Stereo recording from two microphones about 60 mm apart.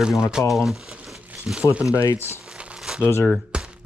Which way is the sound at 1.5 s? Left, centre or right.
Centre.